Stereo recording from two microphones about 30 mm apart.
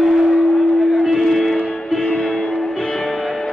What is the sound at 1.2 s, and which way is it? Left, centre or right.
Music, centre.